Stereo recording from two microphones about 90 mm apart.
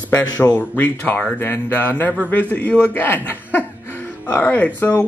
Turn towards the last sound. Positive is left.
turn(degrees=20)  # may be behind; listen again after turning